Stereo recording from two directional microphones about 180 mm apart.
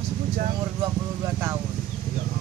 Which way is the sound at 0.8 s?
15° right (ahead or behind).